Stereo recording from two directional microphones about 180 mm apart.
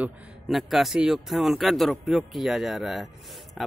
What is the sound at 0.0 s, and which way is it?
A man's voice, centre (ahead or behind).